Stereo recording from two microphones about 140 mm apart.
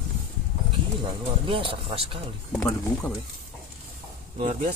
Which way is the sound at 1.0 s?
35° right (ahead or behind).